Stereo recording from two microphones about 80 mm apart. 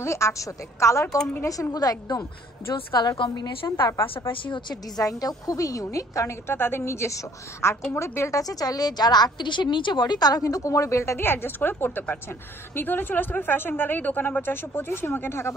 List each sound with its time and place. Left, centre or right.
0.0 s a woman's voice: left
2.9 s a woman's voice: left
4.3 s a woman's voice: left
4.9 s a woman's voice: left
8.4 s a woman's voice: left